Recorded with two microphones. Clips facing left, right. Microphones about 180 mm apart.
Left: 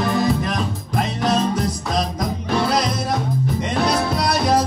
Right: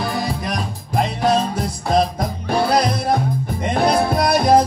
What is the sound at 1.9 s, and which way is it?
Music, 55° right (ahead or behind).